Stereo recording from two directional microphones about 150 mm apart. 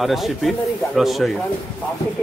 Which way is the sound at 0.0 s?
Centre (ahead or behind).